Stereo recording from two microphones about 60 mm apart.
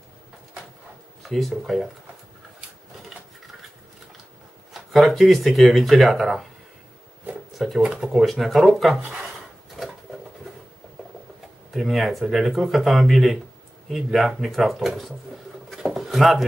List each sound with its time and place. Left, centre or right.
1.2 s speech: centre
3.1 s a sound: centre
4.7 s speech: centre
7.5 s speech: centre
9.8 s pigeon: centre
11.7 s speech: centre
15.7 s a sound: centre